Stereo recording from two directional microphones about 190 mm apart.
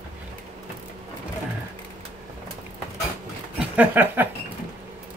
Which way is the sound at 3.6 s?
10° right (ahead or behind).